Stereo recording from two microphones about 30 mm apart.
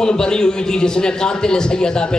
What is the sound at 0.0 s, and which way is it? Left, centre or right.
A man's voice, left.